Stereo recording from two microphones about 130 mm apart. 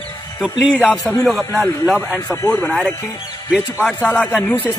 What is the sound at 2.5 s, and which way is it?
A man's voice, 5° left (ahead or behind).